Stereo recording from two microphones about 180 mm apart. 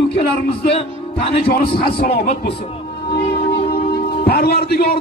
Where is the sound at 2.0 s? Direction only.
60° left (ahead or behind).